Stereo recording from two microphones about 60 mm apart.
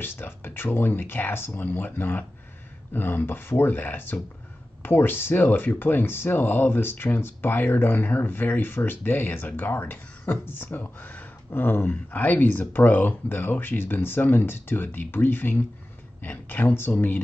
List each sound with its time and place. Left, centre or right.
0.0 s speech: left
16.2 s a sound: left
16.6 s speech: left